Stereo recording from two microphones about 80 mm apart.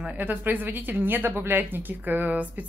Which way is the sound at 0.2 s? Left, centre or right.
Right.